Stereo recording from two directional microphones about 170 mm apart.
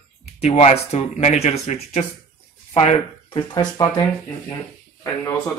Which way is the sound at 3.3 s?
25° left (ahead or behind).